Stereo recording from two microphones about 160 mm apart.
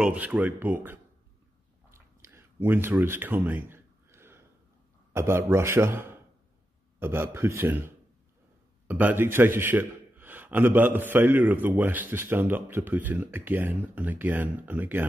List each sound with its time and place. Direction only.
0.0 s a man's voice: 10° right (ahead or behind)
1.9 s a sound: 15° right (ahead or behind)
5.1 s a man's voice: 15° right (ahead or behind)